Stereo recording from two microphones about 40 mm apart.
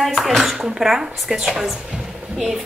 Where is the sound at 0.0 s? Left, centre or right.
Centre.